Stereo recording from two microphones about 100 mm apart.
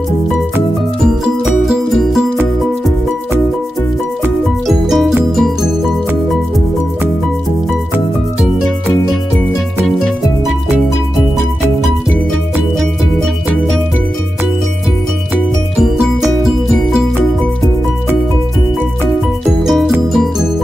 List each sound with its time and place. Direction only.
1.0 s music: 5° right (ahead or behind)
4.6 s music: centre (ahead or behind)
9.9 s music: 5° left (ahead or behind)
19.6 s music: centre (ahead or behind)